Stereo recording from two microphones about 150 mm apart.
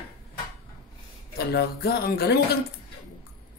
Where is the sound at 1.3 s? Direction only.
90° left.